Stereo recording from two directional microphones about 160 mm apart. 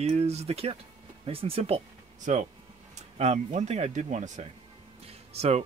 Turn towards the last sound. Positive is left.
turn(degrees=-40)  # may be behind; listen again after turning